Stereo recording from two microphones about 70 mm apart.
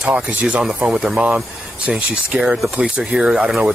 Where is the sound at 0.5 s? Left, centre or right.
Centre.